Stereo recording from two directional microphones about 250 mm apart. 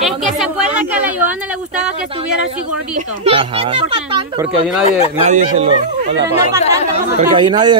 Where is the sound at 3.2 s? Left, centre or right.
Right.